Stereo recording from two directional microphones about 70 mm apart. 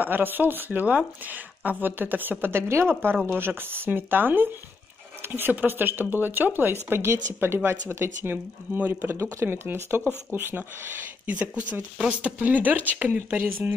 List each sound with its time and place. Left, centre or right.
0.0 s speech: right
9.1 s speech: right